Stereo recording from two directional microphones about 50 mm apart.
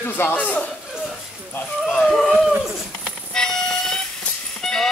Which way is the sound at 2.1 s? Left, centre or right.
Centre.